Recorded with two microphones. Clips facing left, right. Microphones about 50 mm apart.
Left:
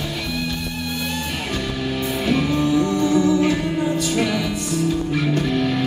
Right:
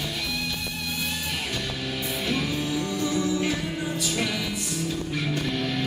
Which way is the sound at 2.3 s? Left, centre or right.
Centre.